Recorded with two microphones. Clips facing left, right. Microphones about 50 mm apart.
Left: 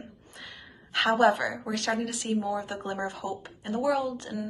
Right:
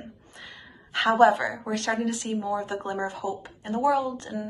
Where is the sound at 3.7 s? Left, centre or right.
Right.